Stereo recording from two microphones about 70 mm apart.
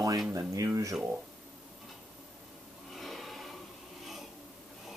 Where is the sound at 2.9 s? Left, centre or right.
Centre.